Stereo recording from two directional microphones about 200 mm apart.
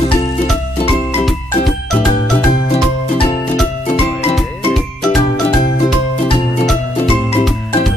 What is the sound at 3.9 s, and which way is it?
Music, 30° left (ahead or behind).